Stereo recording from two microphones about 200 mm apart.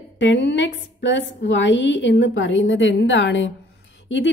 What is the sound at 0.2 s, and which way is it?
A woman's voice, 60° left (ahead or behind).